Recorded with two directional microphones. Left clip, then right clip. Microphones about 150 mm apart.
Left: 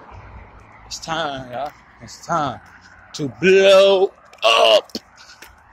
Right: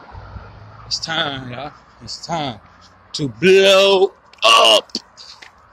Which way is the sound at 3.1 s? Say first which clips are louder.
Right 2 dB; 20° right (ahead or behind).